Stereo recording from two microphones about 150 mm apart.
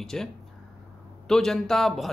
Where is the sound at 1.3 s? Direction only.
5° left (ahead or behind).